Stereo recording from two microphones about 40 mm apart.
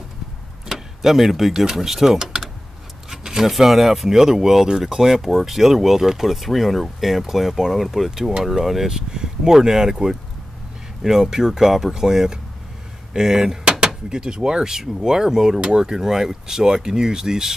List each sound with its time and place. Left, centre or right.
0.7 s speech: centre
8.8 s speech: centre